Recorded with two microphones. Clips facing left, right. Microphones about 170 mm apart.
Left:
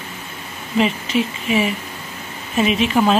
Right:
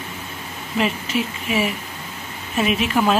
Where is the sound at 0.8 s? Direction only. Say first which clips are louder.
Left 4 dB; centre (ahead or behind).